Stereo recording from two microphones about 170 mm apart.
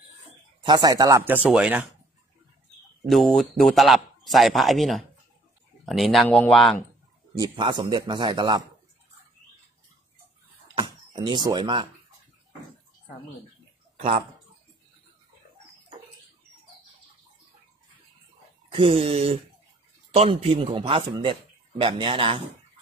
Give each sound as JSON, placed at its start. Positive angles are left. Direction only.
{"t": 0.7, "sound": "speech", "side_deg": -20}
{"t": 3.1, "sound": "a man's voice", "side_deg": 0}
{"t": 7.3, "sound": "speech", "side_deg": -25}
{"t": 10.7, "sound": "speech", "side_deg": -25}
{"t": 18.9, "sound": "a man's voice", "side_deg": -35}